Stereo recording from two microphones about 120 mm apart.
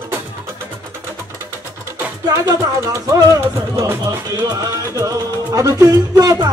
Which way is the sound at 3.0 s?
30° right (ahead or behind).